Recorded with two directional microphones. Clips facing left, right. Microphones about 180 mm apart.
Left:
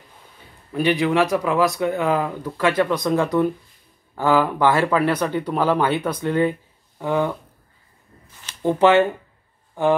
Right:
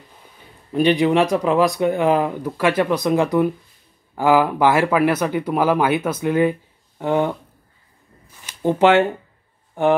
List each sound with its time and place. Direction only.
0.7 s speech: 20° right (ahead or behind)
7.0 s speech: 20° right (ahead or behind)
8.6 s speech: 20° right (ahead or behind)